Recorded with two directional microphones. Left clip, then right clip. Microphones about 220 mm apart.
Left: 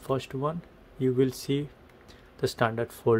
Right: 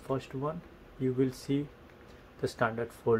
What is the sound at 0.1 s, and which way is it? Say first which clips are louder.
Speech: left 5 dB; 50° left (ahead or behind).